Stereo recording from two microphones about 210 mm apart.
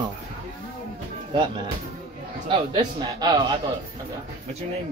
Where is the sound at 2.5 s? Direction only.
20° right (ahead or behind).